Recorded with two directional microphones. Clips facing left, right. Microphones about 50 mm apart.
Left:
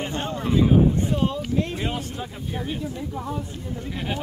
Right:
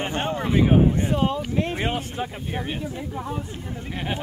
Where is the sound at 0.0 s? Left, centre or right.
Right.